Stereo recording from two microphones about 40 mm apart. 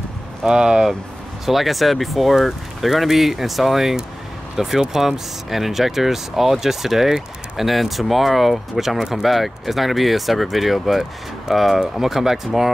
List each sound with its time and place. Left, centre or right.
0.4 s speech: centre
1.4 s speech: centre